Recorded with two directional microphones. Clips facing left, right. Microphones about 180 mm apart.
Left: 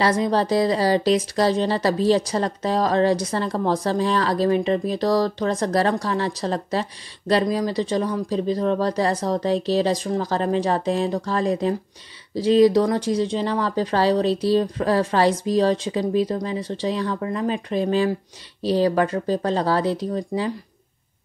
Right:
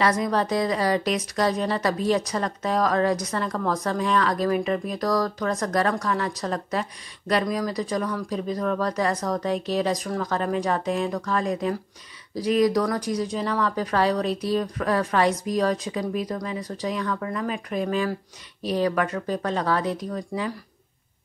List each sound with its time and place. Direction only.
0.0 s speech: 30° left (ahead or behind)